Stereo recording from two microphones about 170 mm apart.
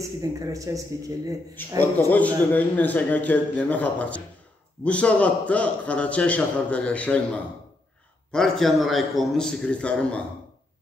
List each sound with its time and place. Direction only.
0.0 s speech: 20° right (ahead or behind)
1.8 s a man's voice: 10° left (ahead or behind)
8.3 s a man's voice: centre (ahead or behind)